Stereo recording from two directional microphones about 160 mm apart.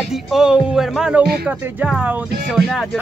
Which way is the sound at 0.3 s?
5° right (ahead or behind).